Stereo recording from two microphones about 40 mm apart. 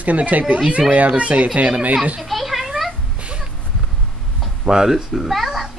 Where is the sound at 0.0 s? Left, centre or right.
Right.